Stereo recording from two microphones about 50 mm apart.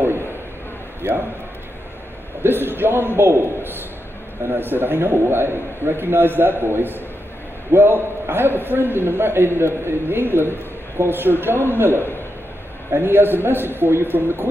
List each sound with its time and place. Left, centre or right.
2.4 s a man's voice: right